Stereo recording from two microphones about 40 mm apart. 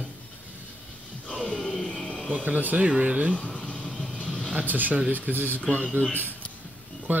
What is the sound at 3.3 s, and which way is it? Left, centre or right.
Speech, left.